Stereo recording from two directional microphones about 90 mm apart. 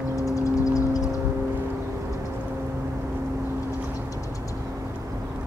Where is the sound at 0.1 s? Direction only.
40° left (ahead or behind).